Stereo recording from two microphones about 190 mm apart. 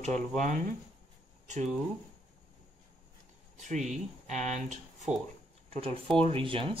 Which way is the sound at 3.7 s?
40° right (ahead or behind).